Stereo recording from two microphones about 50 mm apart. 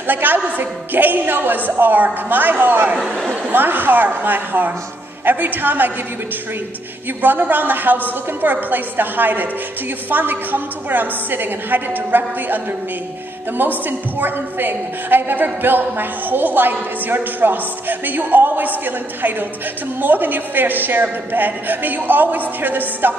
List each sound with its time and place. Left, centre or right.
0.0 s a woman's voice: right
7.2 s a woman's voice: right
13.6 s a woman's voice: right